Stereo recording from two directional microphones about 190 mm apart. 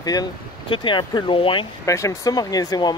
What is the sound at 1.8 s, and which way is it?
Speech, 15° left (ahead or behind).